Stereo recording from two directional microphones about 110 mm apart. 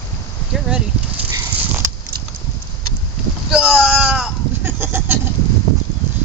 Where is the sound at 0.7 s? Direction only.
10° right (ahead or behind).